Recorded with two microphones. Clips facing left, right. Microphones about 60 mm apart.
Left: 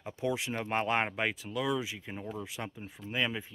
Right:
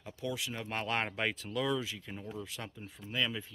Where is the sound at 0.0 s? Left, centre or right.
Left.